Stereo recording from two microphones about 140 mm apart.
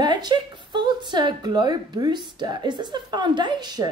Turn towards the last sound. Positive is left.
turn(degrees=-30)  # may be behind; listen again after turning